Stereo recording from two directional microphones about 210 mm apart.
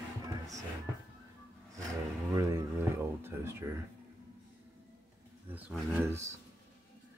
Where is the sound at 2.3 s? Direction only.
15° right (ahead or behind).